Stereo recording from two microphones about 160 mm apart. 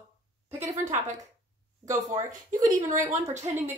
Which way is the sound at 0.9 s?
50° right (ahead or behind).